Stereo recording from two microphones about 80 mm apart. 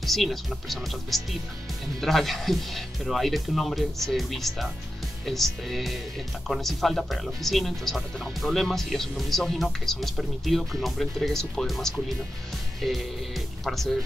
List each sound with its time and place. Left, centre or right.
0.0 s speech: centre